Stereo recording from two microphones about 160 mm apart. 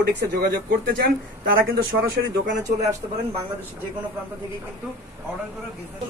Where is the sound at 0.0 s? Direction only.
90° right.